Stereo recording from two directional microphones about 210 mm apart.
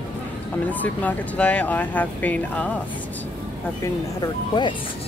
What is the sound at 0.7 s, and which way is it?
Speech, 10° left (ahead or behind).